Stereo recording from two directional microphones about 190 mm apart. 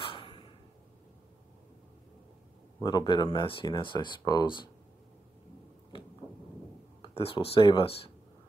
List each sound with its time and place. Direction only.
0.0 s a sound: 25° left (ahead or behind)
2.8 s speech: 25° left (ahead or behind)
7.0 s speech: 25° left (ahead or behind)